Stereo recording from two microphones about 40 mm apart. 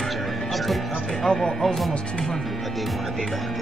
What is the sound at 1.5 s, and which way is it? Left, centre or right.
Speech, centre.